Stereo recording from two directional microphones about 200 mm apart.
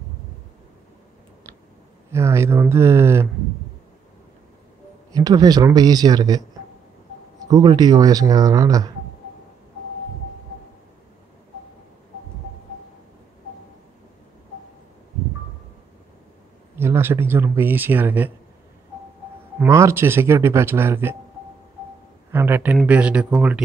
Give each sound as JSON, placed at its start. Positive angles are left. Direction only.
{"t": 2.0, "sound": "speech", "side_deg": -15}
{"t": 5.1, "sound": "speech", "side_deg": -20}
{"t": 7.4, "sound": "speech", "side_deg": -20}
{"t": 16.7, "sound": "speech", "side_deg": -10}
{"t": 19.6, "sound": "speech", "side_deg": -15}
{"t": 22.3, "sound": "speech", "side_deg": -10}